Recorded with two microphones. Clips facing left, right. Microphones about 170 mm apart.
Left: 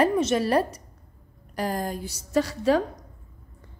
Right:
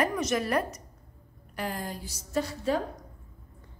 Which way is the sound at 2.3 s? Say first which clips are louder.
Left 6 dB; 90° left.